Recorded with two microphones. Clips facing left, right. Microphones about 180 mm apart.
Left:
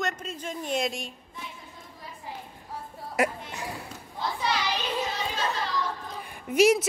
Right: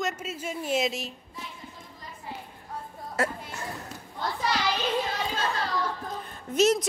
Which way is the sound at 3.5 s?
15° left (ahead or behind).